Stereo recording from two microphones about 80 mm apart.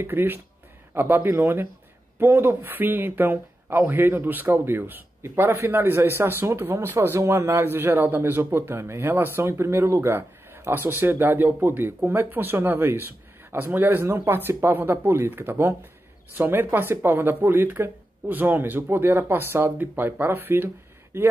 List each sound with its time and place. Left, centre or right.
0.0 s a man's voice: right